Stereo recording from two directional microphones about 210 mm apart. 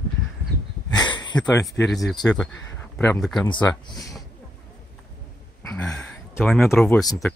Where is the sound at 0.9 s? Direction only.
20° left (ahead or behind).